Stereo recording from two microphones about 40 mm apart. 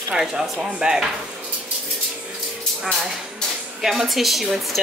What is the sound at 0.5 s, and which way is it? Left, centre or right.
Speech, right.